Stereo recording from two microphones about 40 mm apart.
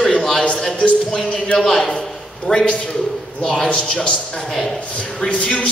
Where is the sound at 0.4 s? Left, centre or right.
Left.